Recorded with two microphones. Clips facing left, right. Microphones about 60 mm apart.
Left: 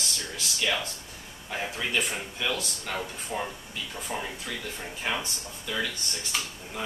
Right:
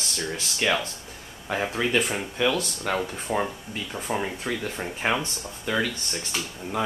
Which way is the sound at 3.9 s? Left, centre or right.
Right.